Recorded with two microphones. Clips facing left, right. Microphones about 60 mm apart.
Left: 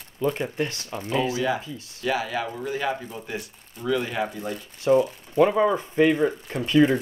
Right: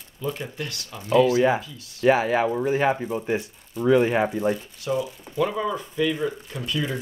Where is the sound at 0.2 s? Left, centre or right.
Left.